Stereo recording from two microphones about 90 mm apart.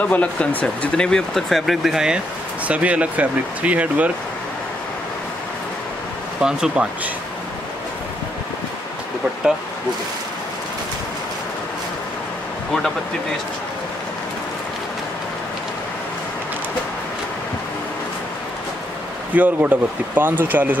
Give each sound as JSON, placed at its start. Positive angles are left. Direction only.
{"t": 0.0, "sound": "speech", "side_deg": 15}
{"t": 6.4, "sound": "speech", "side_deg": -10}
{"t": 19.3, "sound": "speech", "side_deg": -20}